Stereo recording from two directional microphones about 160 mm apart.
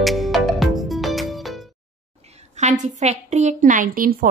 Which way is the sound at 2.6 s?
45° right (ahead or behind).